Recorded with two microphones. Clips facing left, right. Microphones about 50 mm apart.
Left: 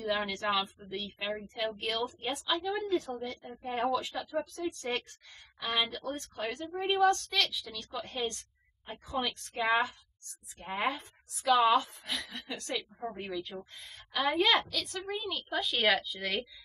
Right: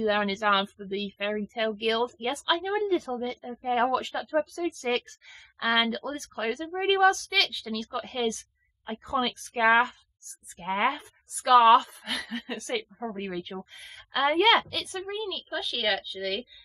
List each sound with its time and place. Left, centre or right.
0.0 s a woman's voice: right
1.6 s a woman's voice: right
12.3 s a woman's voice: right
13.2 s speech: right
13.6 s a woman's voice: right
15.0 s a woman's voice: centre